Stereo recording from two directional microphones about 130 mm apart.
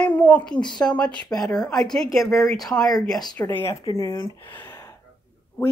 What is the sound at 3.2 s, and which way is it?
Speech, 35° left (ahead or behind).